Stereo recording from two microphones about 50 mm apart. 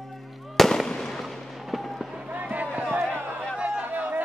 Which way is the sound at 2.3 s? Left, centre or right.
Right.